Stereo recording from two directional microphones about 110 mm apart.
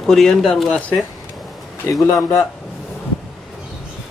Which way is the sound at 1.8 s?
25° left (ahead or behind).